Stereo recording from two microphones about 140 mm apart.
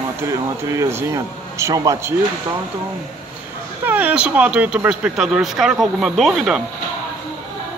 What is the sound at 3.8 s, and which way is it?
Speech, 10° right (ahead or behind).